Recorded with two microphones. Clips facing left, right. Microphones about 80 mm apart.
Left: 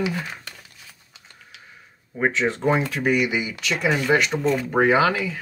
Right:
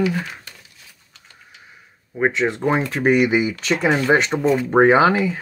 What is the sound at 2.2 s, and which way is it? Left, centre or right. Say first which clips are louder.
Speech: right 3 dB; centre.